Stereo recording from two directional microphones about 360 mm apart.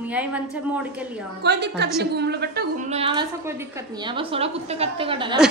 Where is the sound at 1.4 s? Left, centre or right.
Right.